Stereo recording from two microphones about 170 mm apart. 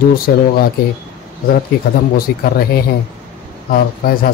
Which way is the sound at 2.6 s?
65° left (ahead or behind).